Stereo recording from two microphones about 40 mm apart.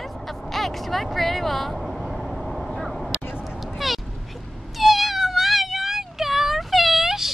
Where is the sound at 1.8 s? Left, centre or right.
Centre.